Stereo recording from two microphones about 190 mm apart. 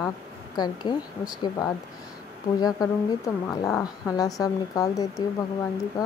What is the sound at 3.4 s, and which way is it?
Speech, 15° left (ahead or behind).